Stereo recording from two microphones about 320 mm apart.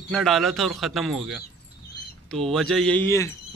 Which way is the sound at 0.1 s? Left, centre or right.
Centre.